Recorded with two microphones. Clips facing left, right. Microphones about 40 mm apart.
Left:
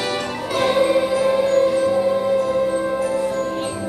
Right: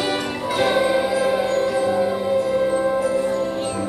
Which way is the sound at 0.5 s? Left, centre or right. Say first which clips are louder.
Left 1 dB; centre.